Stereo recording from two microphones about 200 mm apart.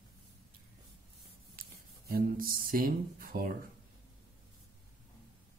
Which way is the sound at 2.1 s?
50° right (ahead or behind).